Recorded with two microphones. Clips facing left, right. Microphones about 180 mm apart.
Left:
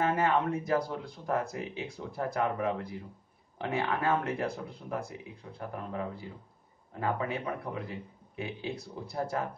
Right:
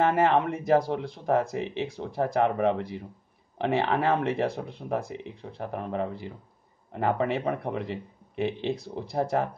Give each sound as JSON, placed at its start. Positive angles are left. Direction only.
{"t": 0.0, "sound": "speech", "side_deg": -75}